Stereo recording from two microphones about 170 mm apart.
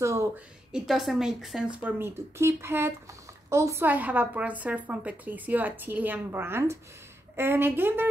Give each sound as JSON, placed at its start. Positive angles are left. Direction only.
{"t": 0.0, "sound": "speech", "side_deg": -15}
{"t": 0.7, "sound": "a woman's voice", "side_deg": 0}